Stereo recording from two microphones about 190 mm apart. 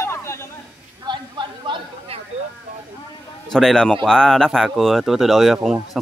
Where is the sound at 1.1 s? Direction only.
20° right (ahead or behind).